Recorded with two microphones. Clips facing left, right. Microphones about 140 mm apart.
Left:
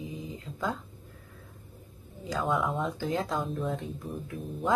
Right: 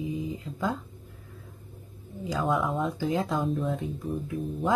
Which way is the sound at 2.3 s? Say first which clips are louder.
Right 2 dB; centre (ahead or behind).